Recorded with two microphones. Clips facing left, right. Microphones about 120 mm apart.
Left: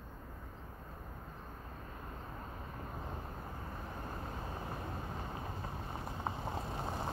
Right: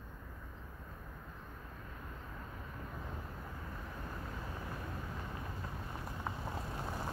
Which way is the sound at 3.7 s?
35° left (ahead or behind).